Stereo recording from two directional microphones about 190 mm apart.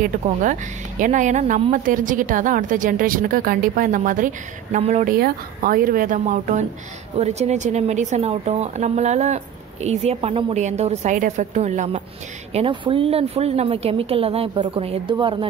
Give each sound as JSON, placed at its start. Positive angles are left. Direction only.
{"t": 0.0, "sound": "speech", "side_deg": -45}
{"t": 5.1, "sound": "speech", "side_deg": -50}
{"t": 12.5, "sound": "a woman's voice", "side_deg": -25}